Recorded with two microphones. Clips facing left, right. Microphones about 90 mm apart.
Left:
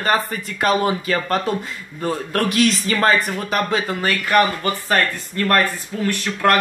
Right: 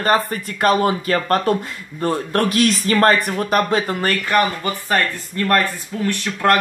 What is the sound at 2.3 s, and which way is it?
Speech, 45° right (ahead or behind).